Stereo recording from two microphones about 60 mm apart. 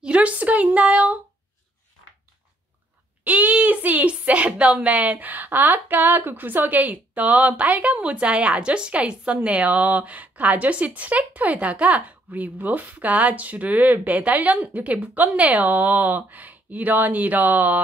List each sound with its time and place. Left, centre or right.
0.0 s a woman's voice: right
3.3 s a woman's voice: right